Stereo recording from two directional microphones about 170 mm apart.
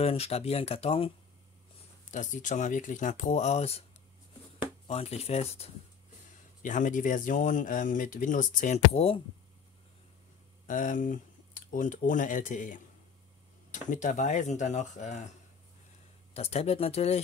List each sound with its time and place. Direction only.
0.0 s speech: 35° left (ahead or behind)
2.0 s speech: 45° left (ahead or behind)
6.6 s speech: 50° left (ahead or behind)
10.7 s speech: 50° left (ahead or behind)
16.3 s speech: 40° left (ahead or behind)